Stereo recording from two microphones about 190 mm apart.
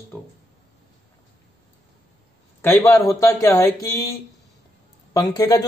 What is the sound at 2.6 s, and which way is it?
A man's voice, 15° left (ahead or behind).